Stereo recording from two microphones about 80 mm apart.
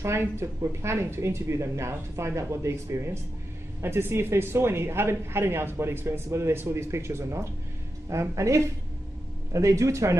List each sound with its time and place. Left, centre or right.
0.0 s speech: right